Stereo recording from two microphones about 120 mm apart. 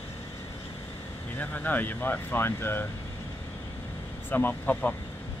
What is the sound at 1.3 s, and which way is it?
Speech, 15° left (ahead or behind).